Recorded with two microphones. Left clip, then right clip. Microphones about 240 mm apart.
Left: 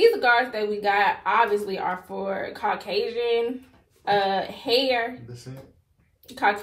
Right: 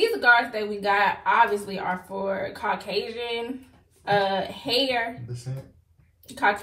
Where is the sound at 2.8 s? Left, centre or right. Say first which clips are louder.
Left 4 dB; left.